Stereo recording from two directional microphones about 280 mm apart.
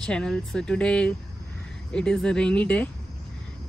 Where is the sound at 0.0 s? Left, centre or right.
Centre.